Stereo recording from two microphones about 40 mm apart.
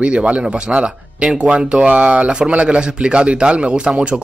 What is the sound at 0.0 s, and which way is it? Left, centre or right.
Speech, right.